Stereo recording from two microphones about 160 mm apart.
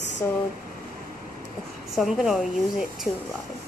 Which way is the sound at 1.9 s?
Centre (ahead or behind).